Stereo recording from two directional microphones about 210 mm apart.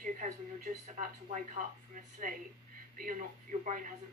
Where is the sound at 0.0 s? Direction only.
40° right (ahead or behind).